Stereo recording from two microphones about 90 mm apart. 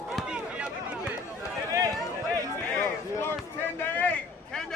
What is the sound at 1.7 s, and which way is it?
Run, 40° right (ahead or behind).